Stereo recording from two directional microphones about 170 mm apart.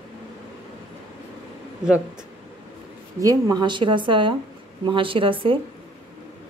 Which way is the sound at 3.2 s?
25° right (ahead or behind).